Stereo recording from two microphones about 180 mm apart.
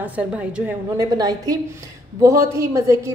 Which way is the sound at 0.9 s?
20° right (ahead or behind).